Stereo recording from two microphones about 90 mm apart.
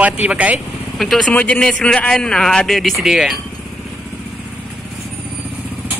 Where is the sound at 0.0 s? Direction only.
15° right (ahead or behind).